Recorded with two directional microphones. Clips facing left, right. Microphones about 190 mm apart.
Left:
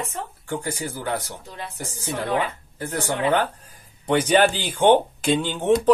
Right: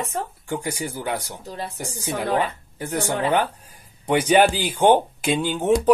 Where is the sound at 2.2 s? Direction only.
40° right (ahead or behind).